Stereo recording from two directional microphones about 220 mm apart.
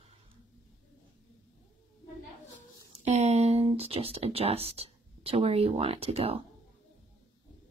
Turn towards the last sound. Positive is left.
turn(degrees=-25)  # may be behind; listen again after turning